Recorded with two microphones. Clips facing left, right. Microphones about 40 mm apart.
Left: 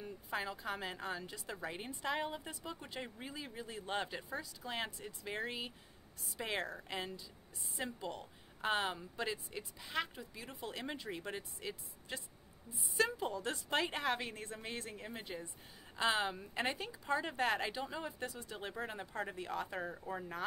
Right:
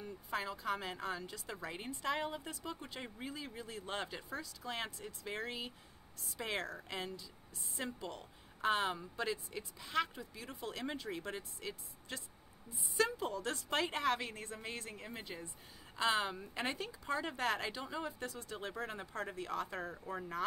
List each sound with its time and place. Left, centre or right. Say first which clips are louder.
0.0 s a woman's voice: even; centre
17.0 s a woman's voice: left 2 dB; centre
18.2 s a woman's voice: even; centre
18.8 s a woman's voice: left 2 dB; centre